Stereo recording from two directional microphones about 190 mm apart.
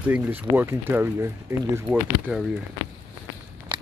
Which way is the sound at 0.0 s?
10° right (ahead or behind).